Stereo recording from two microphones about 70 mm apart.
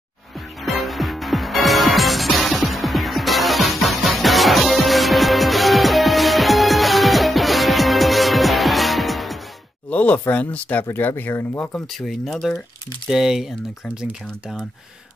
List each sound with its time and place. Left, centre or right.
0.7 s music: centre
9.8 s speech: centre
12.0 s speech: centre